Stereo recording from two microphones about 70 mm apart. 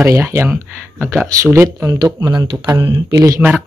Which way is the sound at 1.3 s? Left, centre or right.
Right.